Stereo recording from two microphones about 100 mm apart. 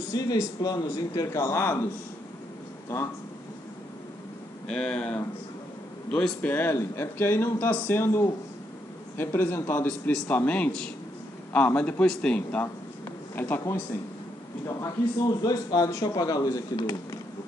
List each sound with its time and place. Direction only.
0.1 s a man's voice: 40° left (ahead or behind)
4.6 s speech: 10° left (ahead or behind)
14.8 s a man's voice: 40° left (ahead or behind)